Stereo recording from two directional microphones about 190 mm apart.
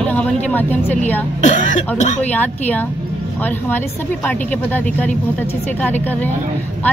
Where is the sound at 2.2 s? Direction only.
10° left (ahead or behind).